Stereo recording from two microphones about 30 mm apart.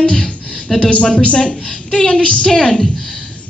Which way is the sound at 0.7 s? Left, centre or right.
Left.